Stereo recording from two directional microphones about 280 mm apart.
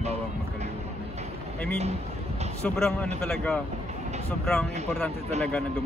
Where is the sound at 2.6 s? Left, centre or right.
Centre.